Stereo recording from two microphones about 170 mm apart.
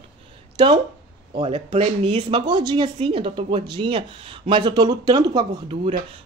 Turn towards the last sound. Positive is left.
turn(degrees=-30)  # may be behind; listen again after turning